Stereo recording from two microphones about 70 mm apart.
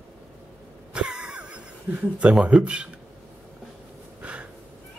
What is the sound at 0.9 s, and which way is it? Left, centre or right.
Cough, centre.